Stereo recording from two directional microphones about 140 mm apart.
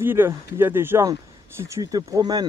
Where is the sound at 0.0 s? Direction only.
15° right (ahead or behind).